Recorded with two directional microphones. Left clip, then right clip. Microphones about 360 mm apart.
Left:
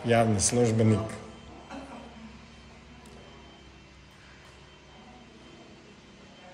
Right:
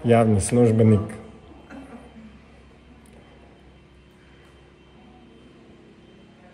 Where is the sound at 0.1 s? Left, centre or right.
Centre.